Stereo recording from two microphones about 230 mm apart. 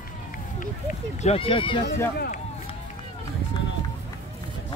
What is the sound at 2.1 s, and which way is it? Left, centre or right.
Speech, left.